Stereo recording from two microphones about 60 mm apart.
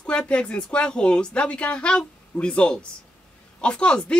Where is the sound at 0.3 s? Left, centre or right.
Centre.